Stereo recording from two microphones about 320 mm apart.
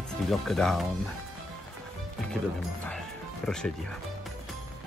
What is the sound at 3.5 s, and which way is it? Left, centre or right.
Speech, centre.